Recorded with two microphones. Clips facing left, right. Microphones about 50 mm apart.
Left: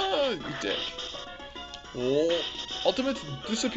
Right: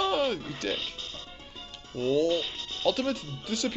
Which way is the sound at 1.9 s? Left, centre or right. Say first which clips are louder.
Even; left.